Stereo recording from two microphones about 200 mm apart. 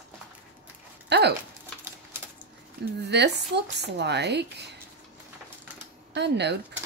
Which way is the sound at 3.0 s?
55° right (ahead or behind).